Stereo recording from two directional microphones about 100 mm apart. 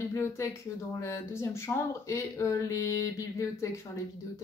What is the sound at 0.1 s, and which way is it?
Speech, 30° left (ahead or behind).